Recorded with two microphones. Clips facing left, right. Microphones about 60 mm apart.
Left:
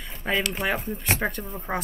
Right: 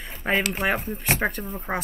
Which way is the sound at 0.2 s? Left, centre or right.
Centre.